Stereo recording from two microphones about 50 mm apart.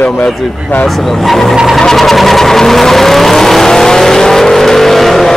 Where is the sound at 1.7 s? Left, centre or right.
Centre.